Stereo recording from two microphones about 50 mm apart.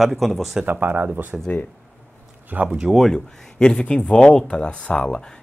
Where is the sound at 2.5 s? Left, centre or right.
Right.